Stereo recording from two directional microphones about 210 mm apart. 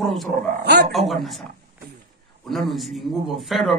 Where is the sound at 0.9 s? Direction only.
Centre (ahead or behind).